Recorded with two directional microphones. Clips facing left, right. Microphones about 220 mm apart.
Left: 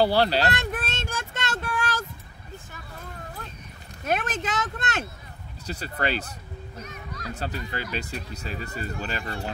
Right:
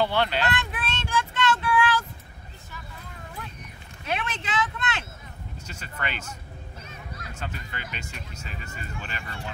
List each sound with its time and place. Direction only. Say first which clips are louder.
0.0 s vehicle: left 4 dB; 35° left (ahead or behind)
4.0 s speech: left 4 dB; 45° left (ahead or behind)
6.8 s music: left 3 dB; 30° right (ahead or behind)
7.2 s speech: left 7 dB; 35° left (ahead or behind)